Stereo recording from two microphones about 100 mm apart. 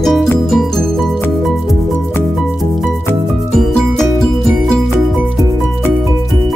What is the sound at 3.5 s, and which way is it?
Music, 5° left (ahead or behind).